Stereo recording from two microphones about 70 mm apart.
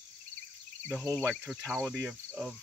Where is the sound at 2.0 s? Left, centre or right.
Centre.